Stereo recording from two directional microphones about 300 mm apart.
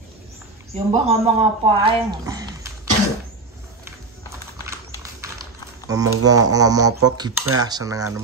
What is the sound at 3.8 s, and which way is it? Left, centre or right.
Typing, centre.